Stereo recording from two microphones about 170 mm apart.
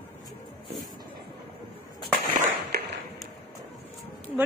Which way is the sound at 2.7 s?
70° right (ahead or behind).